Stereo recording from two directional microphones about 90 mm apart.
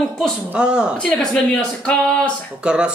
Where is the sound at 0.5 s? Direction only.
10° right (ahead or behind).